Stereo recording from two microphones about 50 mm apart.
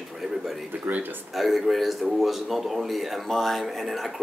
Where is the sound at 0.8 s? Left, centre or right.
Right.